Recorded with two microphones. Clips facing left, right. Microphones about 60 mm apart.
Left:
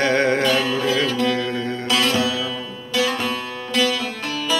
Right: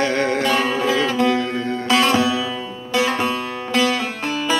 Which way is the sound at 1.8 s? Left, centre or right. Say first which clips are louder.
Right 4 dB; right.